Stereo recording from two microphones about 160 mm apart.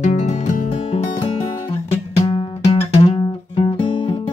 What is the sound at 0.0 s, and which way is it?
Music, 50° left (ahead or behind).